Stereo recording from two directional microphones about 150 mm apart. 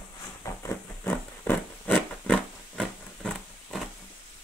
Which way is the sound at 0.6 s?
15° left (ahead or behind).